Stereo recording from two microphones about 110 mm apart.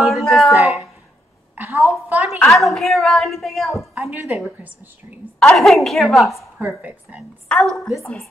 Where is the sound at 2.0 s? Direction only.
15° right (ahead or behind).